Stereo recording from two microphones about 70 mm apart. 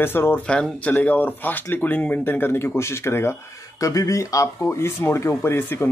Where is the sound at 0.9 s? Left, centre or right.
Left.